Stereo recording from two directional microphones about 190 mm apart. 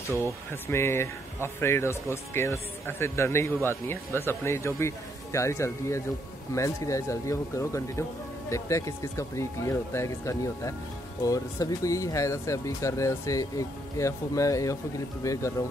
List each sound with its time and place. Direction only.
0.5 s speech: 15° left (ahead or behind)